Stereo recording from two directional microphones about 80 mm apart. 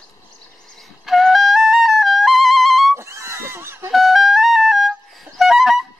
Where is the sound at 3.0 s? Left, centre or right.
Right.